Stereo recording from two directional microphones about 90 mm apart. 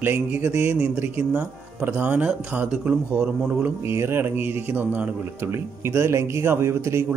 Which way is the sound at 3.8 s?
30° right (ahead or behind).